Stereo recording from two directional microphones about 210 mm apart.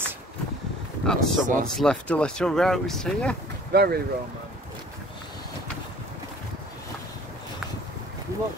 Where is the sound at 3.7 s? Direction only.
45° right (ahead or behind).